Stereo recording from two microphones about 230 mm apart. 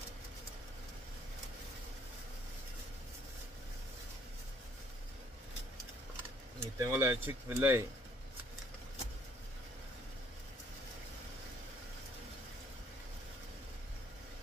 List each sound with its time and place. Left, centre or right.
6.8 s speech: centre